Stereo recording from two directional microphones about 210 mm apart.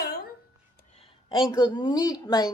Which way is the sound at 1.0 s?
25° left (ahead or behind).